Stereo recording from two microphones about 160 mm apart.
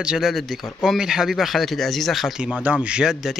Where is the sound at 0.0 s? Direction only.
5° right (ahead or behind).